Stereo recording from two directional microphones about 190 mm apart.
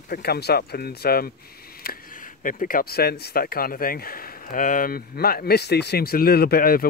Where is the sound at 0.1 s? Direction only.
55° left (ahead or behind).